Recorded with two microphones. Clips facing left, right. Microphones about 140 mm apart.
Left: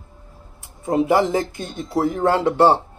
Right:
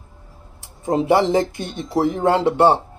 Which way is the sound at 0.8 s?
25° right (ahead or behind).